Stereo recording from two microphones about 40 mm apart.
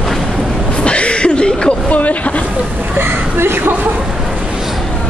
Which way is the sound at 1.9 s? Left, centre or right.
Left.